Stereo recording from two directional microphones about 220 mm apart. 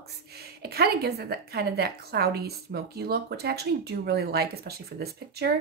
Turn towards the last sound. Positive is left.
turn(degrees=-45)  # may be behind; listen again after turning